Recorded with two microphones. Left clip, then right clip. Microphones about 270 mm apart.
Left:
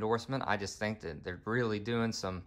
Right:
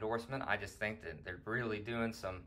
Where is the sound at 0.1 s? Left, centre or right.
Left.